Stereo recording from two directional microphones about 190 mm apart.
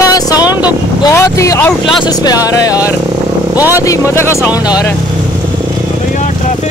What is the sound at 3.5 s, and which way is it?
Speech, 10° right (ahead or behind).